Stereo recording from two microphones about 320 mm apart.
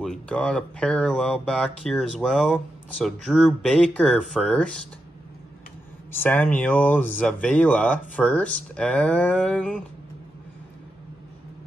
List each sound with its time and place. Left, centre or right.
0.0 s speech: centre
6.1 s speech: centre